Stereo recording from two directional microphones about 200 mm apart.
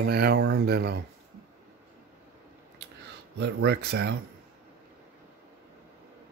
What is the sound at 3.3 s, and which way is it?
Speech, 55° right (ahead or behind).